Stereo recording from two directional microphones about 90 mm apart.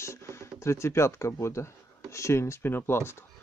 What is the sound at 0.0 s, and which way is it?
Speech, 30° left (ahead or behind).